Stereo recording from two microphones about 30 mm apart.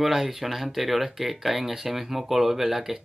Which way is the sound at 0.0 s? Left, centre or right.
Centre.